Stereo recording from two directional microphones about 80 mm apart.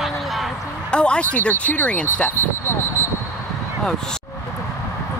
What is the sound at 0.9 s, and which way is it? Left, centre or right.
Speech, centre.